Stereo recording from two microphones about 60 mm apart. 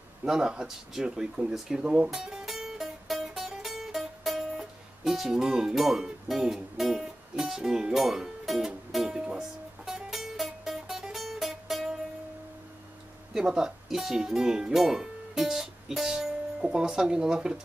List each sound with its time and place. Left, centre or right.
0.2 s speech: centre
2.0 s music: centre
13.3 s speech: centre